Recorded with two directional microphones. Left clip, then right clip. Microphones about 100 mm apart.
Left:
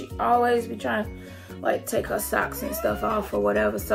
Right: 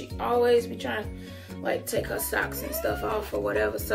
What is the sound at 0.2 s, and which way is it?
Speech, 35° left (ahead or behind).